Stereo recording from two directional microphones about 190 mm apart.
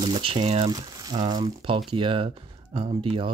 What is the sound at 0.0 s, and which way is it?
Speech, 25° right (ahead or behind).